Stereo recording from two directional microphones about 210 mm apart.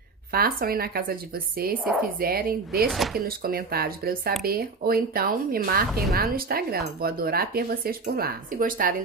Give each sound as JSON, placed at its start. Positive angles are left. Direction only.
{"t": 0.3, "sound": "speech", "side_deg": -45}
{"t": 2.9, "sound": "speech", "side_deg": 0}
{"t": 3.3, "sound": "speech", "side_deg": -45}